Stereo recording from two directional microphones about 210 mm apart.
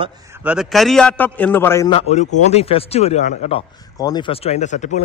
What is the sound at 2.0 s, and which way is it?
A man's voice, 35° left (ahead or behind).